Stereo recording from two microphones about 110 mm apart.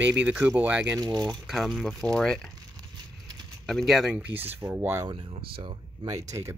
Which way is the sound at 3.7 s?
Centre (ahead or behind).